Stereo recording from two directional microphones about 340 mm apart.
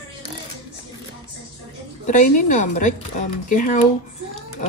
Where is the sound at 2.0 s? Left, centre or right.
Left.